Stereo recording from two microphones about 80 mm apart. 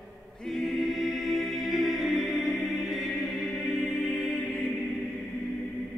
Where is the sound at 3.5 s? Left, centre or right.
Centre.